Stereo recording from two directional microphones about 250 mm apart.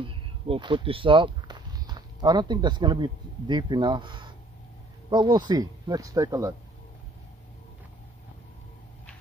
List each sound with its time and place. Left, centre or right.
0.0 s speech: right